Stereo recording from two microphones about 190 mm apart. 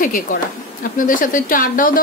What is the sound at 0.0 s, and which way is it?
A woman's voice, 45° left (ahead or behind).